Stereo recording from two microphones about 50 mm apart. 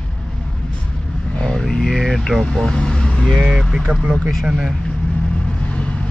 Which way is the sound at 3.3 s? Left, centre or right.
Centre.